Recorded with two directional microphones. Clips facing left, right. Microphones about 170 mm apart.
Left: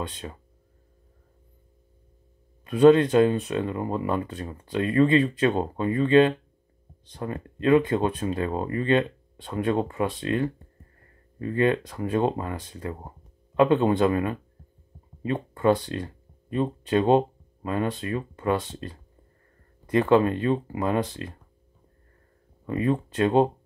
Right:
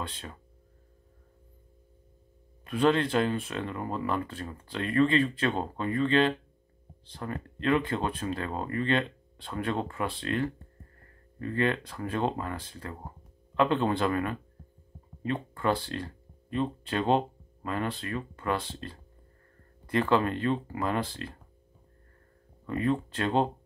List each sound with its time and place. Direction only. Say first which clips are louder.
2.7 s speech: left 8 dB; 20° left (ahead or behind)
22.7 s speech: left 3 dB; 20° left (ahead or behind)